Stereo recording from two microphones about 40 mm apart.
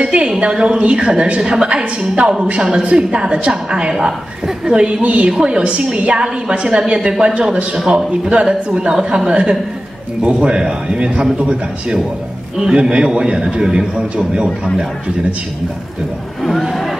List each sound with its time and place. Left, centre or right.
0.0 s a sound: right
0.4 s a man's voice: right
8.1 s a man's voice: right